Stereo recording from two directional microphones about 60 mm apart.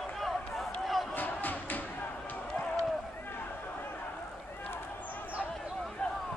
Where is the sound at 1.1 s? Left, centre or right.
Left.